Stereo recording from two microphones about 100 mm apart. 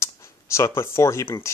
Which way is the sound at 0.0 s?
30° left (ahead or behind).